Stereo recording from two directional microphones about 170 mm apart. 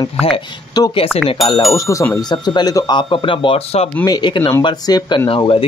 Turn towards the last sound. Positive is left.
turn(degrees=30)  # may be behind; listen again after turning